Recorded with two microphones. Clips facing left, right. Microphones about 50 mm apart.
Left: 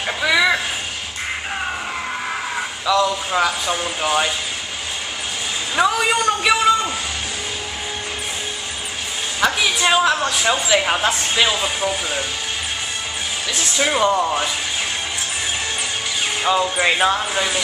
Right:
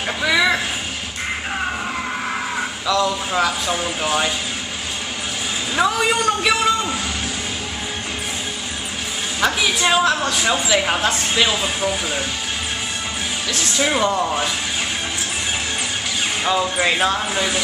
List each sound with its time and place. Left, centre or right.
0.2 s a sound: centre
2.9 s a woman's voice: centre
5.8 s a man's voice: centre
9.4 s a woman's voice: centre
13.5 s a woman's voice: centre
16.4 s a woman's voice: centre